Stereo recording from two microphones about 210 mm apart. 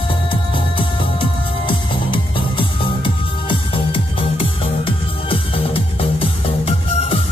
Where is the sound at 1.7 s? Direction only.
25° left (ahead or behind).